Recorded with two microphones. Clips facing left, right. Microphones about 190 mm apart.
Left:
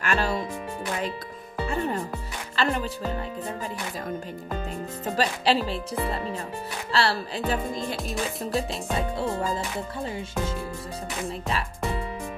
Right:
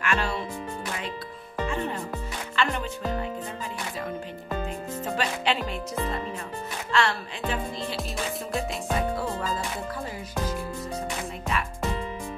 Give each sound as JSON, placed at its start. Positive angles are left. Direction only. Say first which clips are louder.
{"t": 0.0, "sound": "music", "louder": "left 2 dB", "side_deg": 40}
{"t": 2.5, "sound": "music", "louder": "left 2 dB", "side_deg": 35}
{"t": 5.1, "sound": "speech", "louder": "left 4 dB", "side_deg": 35}
{"t": 8.5, "sound": "music", "louder": "left 2 dB", "side_deg": 0}
{"t": 9.1, "sound": "music", "louder": "left 2 dB", "side_deg": 25}